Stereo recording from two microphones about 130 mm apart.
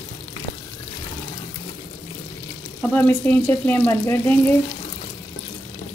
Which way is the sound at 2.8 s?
10° left (ahead or behind).